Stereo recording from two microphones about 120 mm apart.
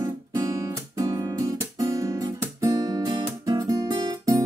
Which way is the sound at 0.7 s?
30° right (ahead or behind).